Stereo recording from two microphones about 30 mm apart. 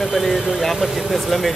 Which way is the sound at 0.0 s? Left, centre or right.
Centre.